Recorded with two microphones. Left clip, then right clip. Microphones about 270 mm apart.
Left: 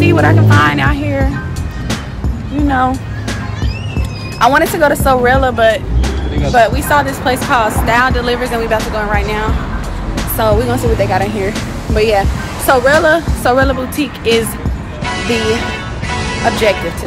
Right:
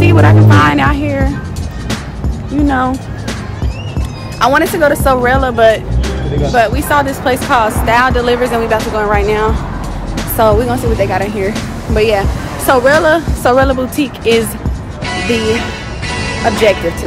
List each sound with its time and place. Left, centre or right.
0.0 s speech: centre
2.7 s speech: centre
4.4 s speech: centre
15.0 s music: centre